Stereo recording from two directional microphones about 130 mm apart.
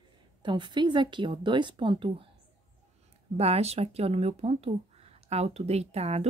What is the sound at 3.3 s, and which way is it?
A woman's voice, 50° right (ahead or behind).